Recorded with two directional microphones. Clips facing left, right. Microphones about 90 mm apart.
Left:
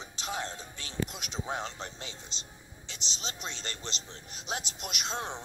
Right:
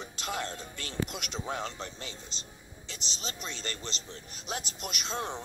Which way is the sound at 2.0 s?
40° right (ahead or behind).